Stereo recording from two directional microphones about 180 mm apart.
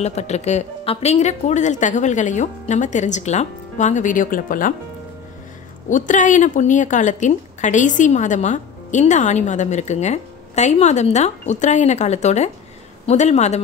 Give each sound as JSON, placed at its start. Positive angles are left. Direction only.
{"t": 0.0, "sound": "a woman's voice", "side_deg": 40}
{"t": 5.9, "sound": "a woman's voice", "side_deg": 45}